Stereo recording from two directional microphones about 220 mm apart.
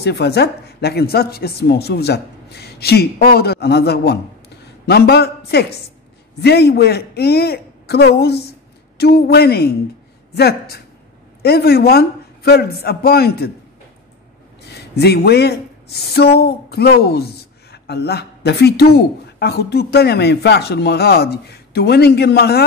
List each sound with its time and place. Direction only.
0.0 s a woman's voice: 50° left (ahead or behind)
14.6 s speech: 50° left (ahead or behind)